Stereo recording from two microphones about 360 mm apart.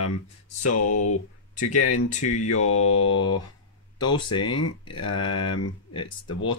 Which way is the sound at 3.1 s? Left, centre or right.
Centre.